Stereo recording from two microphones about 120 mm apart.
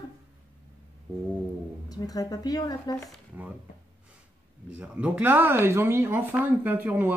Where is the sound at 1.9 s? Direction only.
30° left (ahead or behind).